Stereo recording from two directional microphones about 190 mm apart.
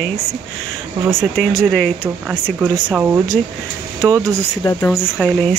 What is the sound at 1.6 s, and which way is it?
Speech, centre (ahead or behind).